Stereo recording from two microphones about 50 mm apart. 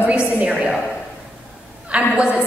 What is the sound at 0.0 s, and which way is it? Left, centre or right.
Speech, right.